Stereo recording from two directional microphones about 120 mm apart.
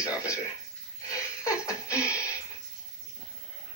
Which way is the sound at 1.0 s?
25° left (ahead or behind).